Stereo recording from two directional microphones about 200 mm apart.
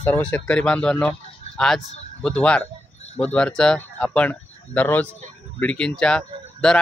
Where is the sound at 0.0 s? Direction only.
10° left (ahead or behind).